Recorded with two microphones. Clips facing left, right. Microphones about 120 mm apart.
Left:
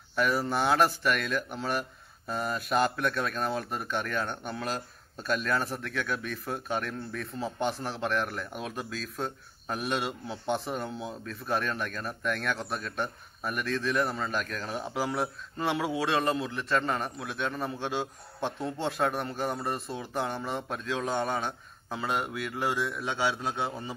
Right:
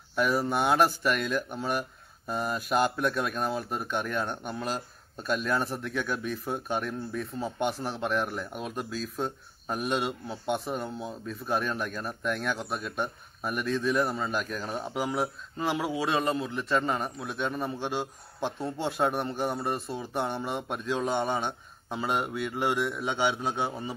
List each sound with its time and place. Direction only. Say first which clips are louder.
0.1 s speech: right 1 dB; centre (ahead or behind)
21.5 s speech: right 1 dB; 20° right (ahead or behind)
22.0 s speech: right 2 dB; centre (ahead or behind)
23.2 s a man's voice: right 2 dB; 25° right (ahead or behind)